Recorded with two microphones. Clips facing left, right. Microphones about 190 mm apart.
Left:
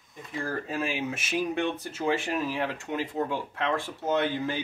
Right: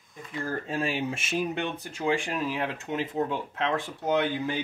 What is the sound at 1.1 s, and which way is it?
Speech, 25° right (ahead or behind).